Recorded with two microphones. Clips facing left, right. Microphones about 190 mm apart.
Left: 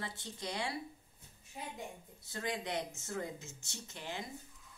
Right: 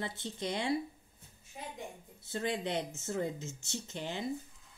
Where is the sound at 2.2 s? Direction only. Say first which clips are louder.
Right 4 dB; 25° right (ahead or behind).